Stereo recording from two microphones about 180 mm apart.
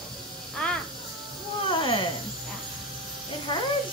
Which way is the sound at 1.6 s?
30° left (ahead or behind).